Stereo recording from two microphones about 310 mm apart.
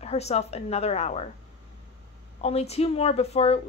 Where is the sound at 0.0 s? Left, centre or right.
Left.